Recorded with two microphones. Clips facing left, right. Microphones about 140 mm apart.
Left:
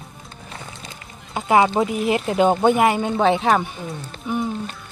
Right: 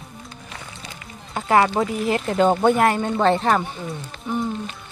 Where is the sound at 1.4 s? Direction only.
15° left (ahead or behind).